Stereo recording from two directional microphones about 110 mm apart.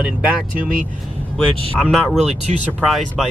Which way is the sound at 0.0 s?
10° right (ahead or behind).